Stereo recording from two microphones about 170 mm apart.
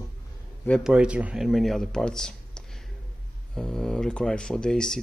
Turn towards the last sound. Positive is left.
turn(degrees=5)  # may be behind; listen again after turning